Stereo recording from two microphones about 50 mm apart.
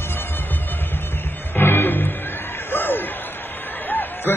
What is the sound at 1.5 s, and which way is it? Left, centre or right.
Music, left.